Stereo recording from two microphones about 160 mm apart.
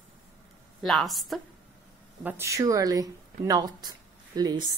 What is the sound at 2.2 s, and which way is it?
A woman's voice, 15° right (ahead or behind).